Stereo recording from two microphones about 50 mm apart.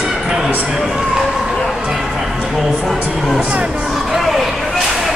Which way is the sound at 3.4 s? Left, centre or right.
Right.